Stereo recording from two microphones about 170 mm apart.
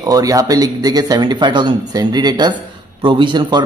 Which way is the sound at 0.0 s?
20° right (ahead or behind).